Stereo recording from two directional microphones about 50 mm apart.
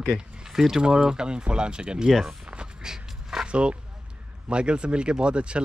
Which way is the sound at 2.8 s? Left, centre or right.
Centre.